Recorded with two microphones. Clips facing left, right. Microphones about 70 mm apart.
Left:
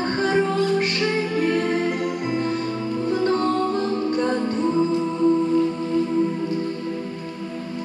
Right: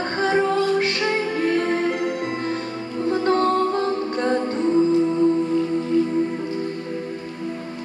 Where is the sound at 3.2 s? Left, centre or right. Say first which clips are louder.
Right 3 dB; right.